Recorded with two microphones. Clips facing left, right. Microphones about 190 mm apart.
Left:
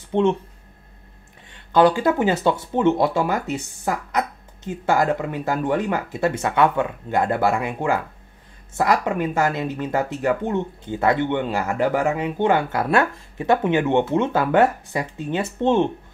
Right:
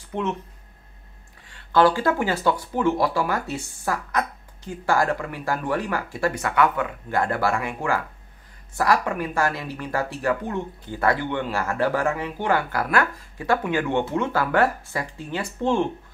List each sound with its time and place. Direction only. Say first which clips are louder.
0.1 s speech: left 8 dB; 30° left (ahead or behind)
1.5 s speech: left 2 dB; 20° left (ahead or behind)